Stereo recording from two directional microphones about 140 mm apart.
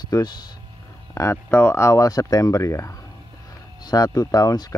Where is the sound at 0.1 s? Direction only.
30° left (ahead or behind).